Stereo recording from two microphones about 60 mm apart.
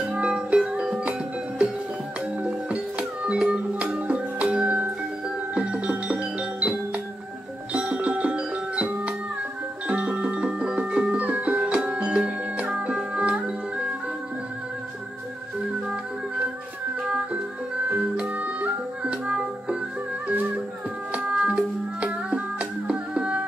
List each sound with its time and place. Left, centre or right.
0.1 s music: centre
2.4 s music: right
7.7 s music: right
17.8 s music: right
21.1 s music: centre